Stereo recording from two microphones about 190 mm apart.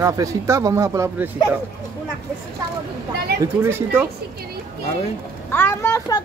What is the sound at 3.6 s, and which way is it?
Speech, 10° right (ahead or behind).